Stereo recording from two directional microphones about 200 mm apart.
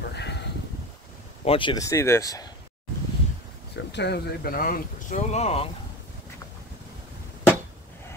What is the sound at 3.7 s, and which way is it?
Speech, 60° left (ahead or behind).